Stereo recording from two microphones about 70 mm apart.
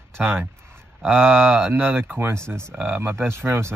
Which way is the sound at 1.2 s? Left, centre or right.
Right.